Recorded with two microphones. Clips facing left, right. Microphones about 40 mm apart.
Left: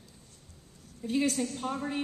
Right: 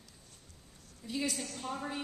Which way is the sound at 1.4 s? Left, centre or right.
Left.